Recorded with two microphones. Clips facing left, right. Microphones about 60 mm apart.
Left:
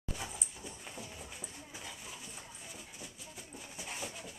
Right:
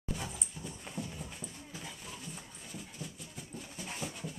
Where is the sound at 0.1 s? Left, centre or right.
Centre.